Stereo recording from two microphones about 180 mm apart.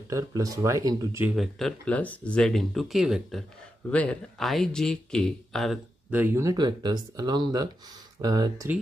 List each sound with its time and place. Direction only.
0.1 s speech: 20° right (ahead or behind)
1.2 s speech: centre (ahead or behind); by 8.6 s 20° right (ahead or behind)